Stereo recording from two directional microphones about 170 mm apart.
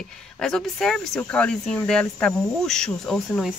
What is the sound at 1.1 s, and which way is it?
Cricket, 10° left (ahead or behind).